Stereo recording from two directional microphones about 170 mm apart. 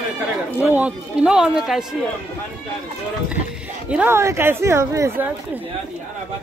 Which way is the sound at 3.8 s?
10° right (ahead or behind).